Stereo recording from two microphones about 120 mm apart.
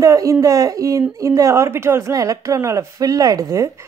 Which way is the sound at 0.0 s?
25° right (ahead or behind).